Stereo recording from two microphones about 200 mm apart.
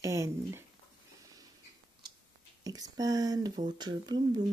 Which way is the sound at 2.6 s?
20° right (ahead or behind).